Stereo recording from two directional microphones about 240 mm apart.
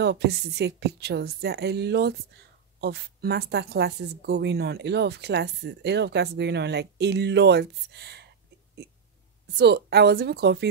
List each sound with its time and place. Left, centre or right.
0.0 s speech: right
9.6 s speech: right